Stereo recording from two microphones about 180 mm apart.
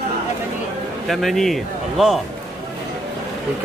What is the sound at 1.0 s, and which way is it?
Speech, centre (ahead or behind).